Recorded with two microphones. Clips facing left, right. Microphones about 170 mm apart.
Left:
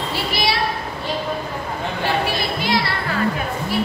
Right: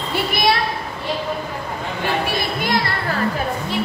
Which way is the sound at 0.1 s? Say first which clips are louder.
Right 6 dB; 55° right (ahead or behind).